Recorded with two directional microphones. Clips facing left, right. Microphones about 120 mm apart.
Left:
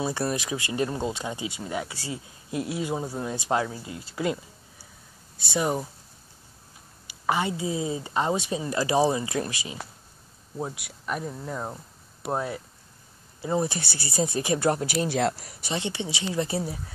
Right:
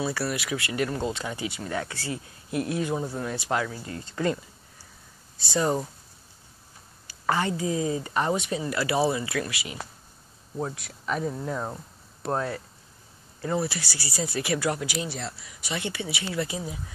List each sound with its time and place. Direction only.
0.0 s speech: 20° left (ahead or behind)
3.9 s speech: 10° left (ahead or behind)
5.6 s speech: 10° left (ahead or behind)
7.2 s speech: 15° left (ahead or behind)
9.4 s speech: 30° left (ahead or behind)
10.6 s speech: 15° left (ahead or behind)
14.7 s speech: 40° left (ahead or behind)
15.0 s speech: 85° left
15.3 s speech: 40° left (ahead or behind)